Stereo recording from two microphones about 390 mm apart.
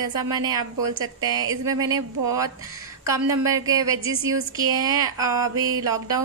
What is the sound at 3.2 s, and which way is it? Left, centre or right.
A woman's voice, centre.